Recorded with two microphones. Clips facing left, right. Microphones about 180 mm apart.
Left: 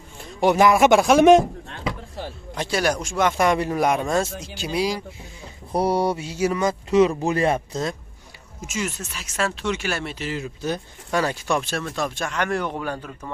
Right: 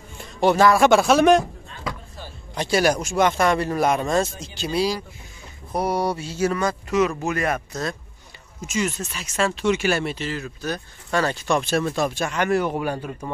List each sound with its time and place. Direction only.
0.4 s speech: 15° left (ahead or behind)
2.5 s speech: centre (ahead or behind)
3.3 s speech: 15° left (ahead or behind)
5.7 s speech: 30° left (ahead or behind)
6.9 s speech: 30° left (ahead or behind)
8.5 s speech: 5° left (ahead or behind)
10.2 s speech: 20° left (ahead or behind)
11.1 s speech: 10° left (ahead or behind)
11.9 s speech: 5° right (ahead or behind)